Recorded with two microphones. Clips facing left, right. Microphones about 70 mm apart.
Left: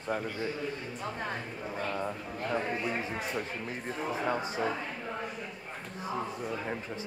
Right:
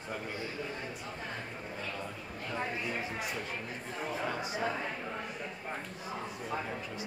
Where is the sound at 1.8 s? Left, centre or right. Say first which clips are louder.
Left 7 dB; left.